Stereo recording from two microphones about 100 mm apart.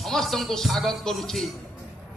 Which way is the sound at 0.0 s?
5° left (ahead or behind).